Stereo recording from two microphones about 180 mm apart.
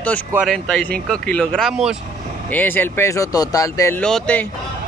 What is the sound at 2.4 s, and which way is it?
Speech, 10° left (ahead or behind).